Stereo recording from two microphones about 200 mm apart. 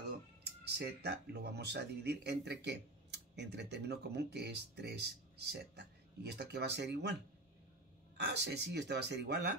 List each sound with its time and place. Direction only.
0.4 s speech: 55° right (ahead or behind)
8.3 s speech: 60° right (ahead or behind)